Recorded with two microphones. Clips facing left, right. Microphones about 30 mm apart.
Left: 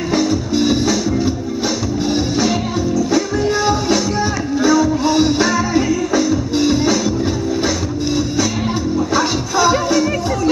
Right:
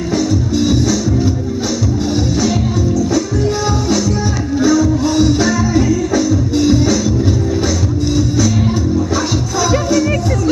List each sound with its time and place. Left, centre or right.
0.1 s music: left
3.4 s music: centre
9.1 s music: centre